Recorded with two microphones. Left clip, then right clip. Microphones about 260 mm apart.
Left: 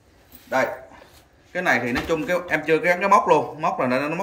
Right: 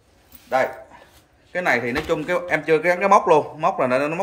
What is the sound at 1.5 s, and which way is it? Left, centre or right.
Speech, centre.